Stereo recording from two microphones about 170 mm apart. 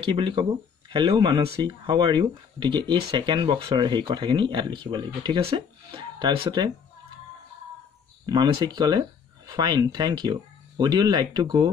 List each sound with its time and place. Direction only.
0.0 s speech: 30° right (ahead or behind)
8.3 s speech: 25° right (ahead or behind)